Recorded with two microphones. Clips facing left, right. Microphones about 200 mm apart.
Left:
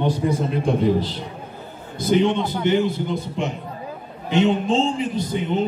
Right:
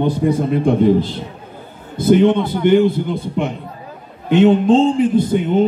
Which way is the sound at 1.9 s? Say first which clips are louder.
Right 6 dB; 55° right (ahead or behind).